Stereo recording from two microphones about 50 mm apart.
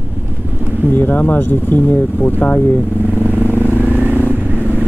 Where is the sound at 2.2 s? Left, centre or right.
Left.